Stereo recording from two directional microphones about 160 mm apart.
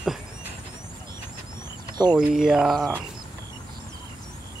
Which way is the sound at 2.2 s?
5° right (ahead or behind).